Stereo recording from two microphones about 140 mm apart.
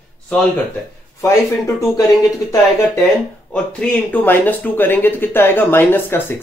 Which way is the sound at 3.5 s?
5° left (ahead or behind).